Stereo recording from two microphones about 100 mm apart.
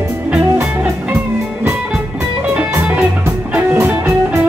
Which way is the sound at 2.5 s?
15° right (ahead or behind).